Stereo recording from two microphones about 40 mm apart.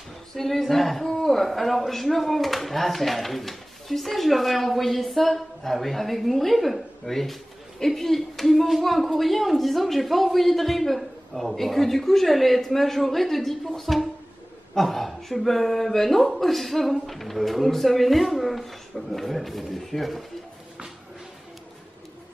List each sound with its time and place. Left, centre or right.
0.4 s speech: centre